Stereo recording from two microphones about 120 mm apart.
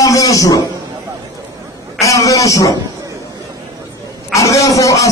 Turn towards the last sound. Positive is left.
turn(degrees=30)  # may be behind; listen again after turning